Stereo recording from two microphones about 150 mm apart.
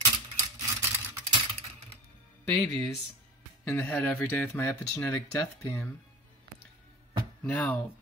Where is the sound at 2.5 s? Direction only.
5° left (ahead or behind).